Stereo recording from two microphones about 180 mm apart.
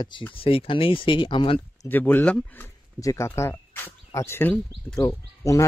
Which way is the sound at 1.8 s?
10° left (ahead or behind).